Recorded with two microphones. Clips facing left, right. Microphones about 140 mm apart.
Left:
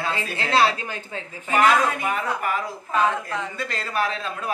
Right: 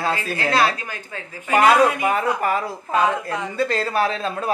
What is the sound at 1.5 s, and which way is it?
Speech, 50° right (ahead or behind).